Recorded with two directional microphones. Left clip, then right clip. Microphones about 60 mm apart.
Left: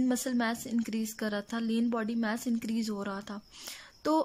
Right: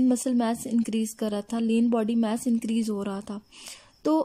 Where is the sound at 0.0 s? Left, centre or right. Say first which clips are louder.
Right 6 dB; right.